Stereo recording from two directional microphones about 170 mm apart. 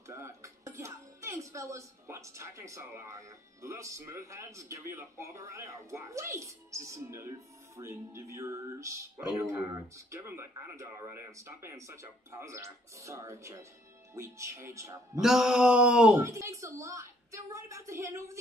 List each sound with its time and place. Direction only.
0.1 s speech: 15° right (ahead or behind)
15.1 s a sound: 5° right (ahead or behind)
16.3 s a woman's voice: 15° right (ahead or behind)